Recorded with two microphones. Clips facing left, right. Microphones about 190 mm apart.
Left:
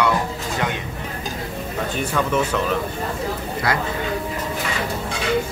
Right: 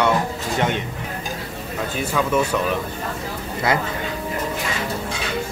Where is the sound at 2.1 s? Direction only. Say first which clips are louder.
Right 1 dB; 10° right (ahead or behind).